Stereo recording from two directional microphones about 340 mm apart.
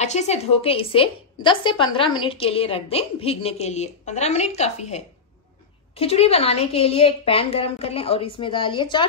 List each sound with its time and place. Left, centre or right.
0.0 s a woman's voice: centre